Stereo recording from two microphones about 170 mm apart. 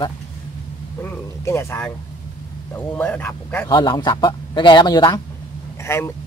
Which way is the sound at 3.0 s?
10° left (ahead or behind).